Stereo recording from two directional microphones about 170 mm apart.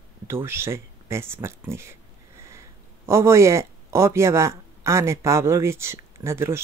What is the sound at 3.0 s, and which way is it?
Speech, 15° right (ahead or behind).